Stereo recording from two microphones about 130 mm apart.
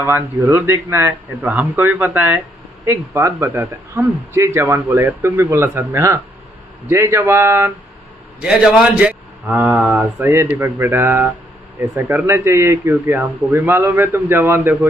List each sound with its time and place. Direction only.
0.0 s speech: 20° right (ahead or behind)
1.4 s a man's voice: 5° right (ahead or behind)
1.8 s speech: 15° right (ahead or behind)
8.4 s a man's voice: 5° right (ahead or behind)
10.1 s a man's voice: 20° right (ahead or behind)